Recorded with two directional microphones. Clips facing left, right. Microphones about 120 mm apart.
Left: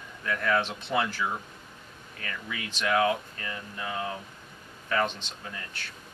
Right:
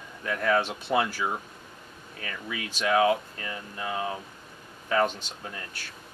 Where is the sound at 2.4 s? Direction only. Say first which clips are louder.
Right 2 dB; 15° right (ahead or behind).